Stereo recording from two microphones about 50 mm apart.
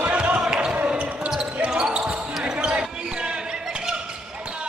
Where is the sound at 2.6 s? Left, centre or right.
Right.